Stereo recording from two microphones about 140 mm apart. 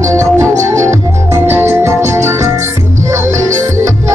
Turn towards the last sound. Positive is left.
turn(degrees=-20)  # may be behind; listen again after turning